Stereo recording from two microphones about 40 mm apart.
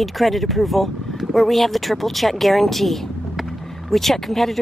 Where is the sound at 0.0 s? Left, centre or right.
Centre.